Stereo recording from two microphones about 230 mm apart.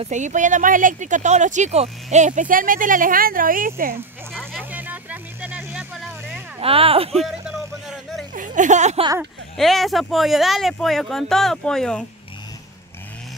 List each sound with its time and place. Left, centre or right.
0.0 s speech: right
4.3 s music: centre
6.6 s speech: right
7.2 s a sound: centre
8.4 s speech: right
9.2 s speech: centre